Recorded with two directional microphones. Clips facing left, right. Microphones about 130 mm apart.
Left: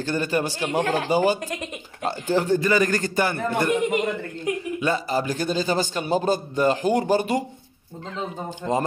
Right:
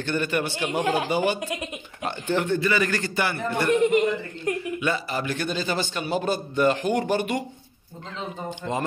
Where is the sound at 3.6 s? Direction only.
10° left (ahead or behind).